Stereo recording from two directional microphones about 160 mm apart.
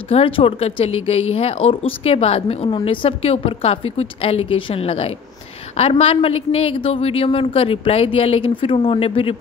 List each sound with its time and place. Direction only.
0.1 s speech: 35° left (ahead or behind)